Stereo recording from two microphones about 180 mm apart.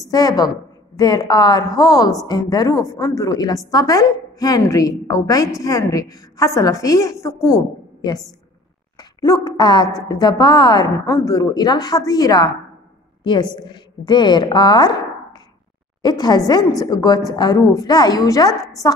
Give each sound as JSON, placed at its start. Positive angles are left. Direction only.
{"t": 0.1, "sound": "a woman's voice", "side_deg": 20}
{"t": 9.2, "sound": "a woman's voice", "side_deg": 20}
{"t": 16.0, "sound": "a woman's voice", "side_deg": 25}